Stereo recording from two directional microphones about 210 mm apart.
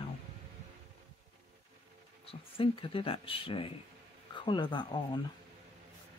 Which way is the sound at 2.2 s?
25° left (ahead or behind).